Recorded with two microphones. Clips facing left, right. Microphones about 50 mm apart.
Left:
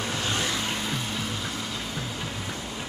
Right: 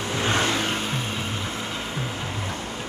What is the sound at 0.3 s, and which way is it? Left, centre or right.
Vehicle, right.